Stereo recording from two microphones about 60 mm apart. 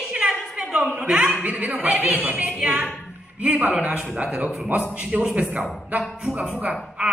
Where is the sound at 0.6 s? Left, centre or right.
Centre.